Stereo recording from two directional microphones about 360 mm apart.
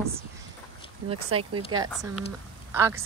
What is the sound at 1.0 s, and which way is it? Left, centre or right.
Speech, right.